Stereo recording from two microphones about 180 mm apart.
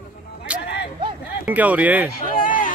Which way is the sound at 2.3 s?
50° left (ahead or behind).